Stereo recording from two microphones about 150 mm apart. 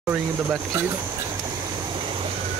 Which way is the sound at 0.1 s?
15° right (ahead or behind).